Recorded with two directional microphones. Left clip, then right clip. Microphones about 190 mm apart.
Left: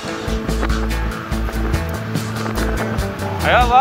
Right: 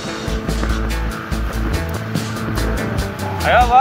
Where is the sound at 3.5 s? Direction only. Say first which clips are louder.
Right 1 dB; 20° left (ahead or behind).